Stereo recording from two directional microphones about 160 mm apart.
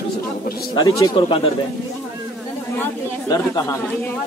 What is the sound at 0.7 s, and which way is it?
Speech, 25° left (ahead or behind).